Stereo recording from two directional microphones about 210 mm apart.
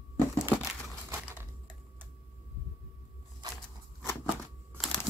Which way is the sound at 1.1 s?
10° right (ahead or behind).